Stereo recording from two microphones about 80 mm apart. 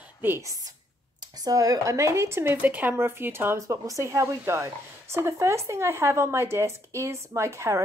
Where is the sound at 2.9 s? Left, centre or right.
Right.